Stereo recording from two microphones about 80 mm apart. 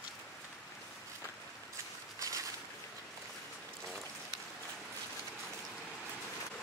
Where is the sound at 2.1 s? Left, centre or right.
Right.